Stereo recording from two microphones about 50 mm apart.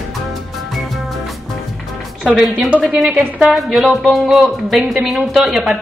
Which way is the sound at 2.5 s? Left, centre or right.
Right.